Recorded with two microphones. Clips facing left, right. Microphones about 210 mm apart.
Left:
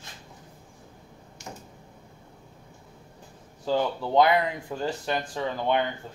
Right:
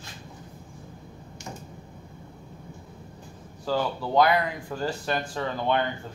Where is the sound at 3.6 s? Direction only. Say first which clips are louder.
Left 1 dB; 20° left (ahead or behind).